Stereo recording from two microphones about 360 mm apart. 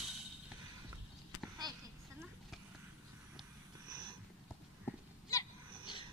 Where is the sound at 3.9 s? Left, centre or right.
Centre.